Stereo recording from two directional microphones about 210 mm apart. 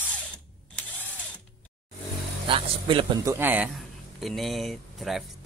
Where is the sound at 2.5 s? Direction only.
25° right (ahead or behind).